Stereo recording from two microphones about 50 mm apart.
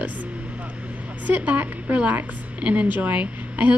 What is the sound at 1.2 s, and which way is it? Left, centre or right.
A woman's voice, right.